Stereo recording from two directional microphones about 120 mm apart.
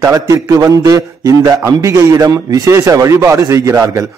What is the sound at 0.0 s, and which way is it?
A man's voice, 25° right (ahead or behind).